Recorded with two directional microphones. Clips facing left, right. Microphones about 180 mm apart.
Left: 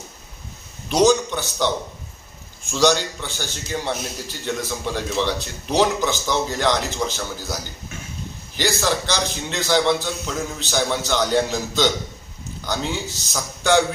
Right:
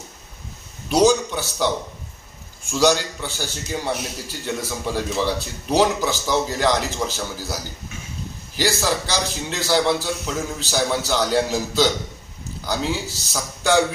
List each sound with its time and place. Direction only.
0.8 s speech: 5° right (ahead or behind)
2.7 s speech: 10° right (ahead or behind)
8.5 s a man's voice: 5° right (ahead or behind)